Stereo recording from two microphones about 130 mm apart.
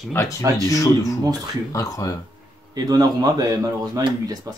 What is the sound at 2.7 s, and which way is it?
Speech, 30° right (ahead or behind).